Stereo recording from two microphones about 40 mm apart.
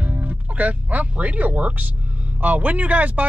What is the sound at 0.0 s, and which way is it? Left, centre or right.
Speech, right.